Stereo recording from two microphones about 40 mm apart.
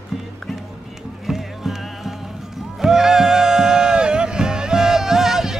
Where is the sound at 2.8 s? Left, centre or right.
Centre.